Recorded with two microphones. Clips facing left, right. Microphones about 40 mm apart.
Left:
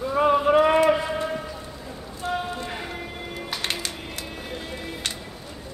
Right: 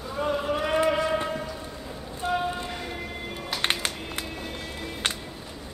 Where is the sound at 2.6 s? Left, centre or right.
Centre.